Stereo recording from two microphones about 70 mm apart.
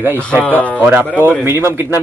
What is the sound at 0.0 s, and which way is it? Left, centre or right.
Speech, right.